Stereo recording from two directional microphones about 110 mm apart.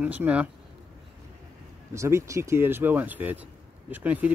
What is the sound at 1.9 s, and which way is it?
Speech, 25° right (ahead or behind).